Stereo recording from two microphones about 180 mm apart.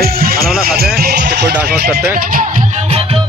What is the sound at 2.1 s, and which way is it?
Music, 50° right (ahead or behind).